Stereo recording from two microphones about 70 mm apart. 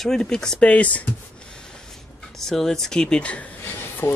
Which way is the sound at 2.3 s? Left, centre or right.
Centre.